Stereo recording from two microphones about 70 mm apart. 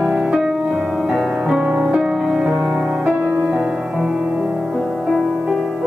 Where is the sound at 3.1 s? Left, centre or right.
Right.